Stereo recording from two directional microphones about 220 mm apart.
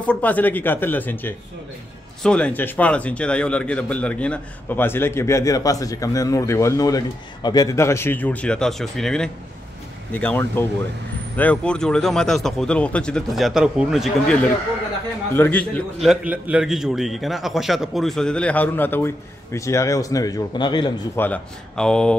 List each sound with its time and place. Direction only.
0.0 s a man's voice: 5° left (ahead or behind)
21.2 s a man's voice: 5° left (ahead or behind)